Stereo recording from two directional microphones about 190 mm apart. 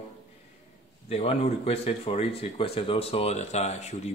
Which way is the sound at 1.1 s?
30° left (ahead or behind).